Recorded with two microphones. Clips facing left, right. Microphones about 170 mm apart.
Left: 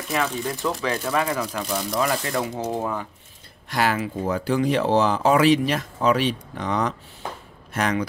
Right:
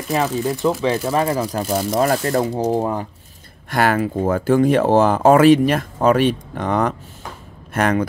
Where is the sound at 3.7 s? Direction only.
55° right (ahead or behind).